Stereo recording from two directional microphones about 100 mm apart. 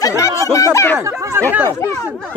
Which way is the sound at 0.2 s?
35° left (ahead or behind).